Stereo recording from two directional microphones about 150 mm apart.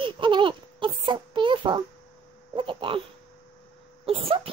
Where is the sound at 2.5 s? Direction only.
35° right (ahead or behind).